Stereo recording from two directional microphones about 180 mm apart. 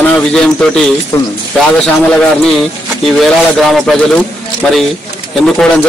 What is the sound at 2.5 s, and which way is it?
Speech, centre (ahead or behind).